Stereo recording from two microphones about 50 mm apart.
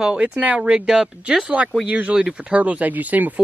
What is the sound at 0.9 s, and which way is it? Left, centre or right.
Speech, centre.